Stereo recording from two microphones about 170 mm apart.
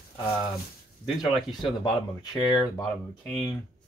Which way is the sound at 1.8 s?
25° left (ahead or behind).